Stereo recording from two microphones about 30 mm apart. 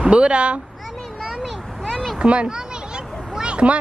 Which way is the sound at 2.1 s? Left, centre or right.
Right.